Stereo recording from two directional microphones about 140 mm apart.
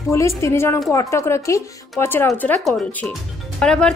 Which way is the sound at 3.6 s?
5° left (ahead or behind).